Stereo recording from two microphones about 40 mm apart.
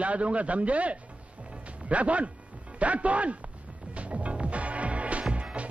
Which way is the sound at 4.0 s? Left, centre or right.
Right.